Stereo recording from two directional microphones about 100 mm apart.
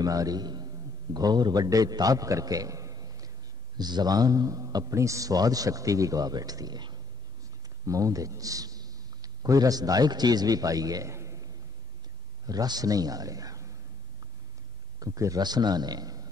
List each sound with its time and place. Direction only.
0.0 s a man's voice: 35° right (ahead or behind)
7.8 s a man's voice: 35° right (ahead or behind)
15.0 s a man's voice: 35° right (ahead or behind)